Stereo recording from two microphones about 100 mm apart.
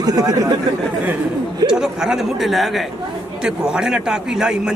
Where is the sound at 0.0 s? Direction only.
40° right (ahead or behind).